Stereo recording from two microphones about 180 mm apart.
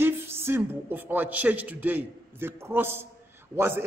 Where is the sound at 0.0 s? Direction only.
10° right (ahead or behind).